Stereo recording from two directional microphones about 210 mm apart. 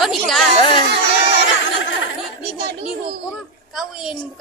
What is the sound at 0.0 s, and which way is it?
Chatter, centre (ahead or behind).